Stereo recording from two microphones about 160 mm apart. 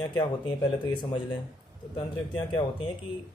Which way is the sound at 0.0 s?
25° left (ahead or behind).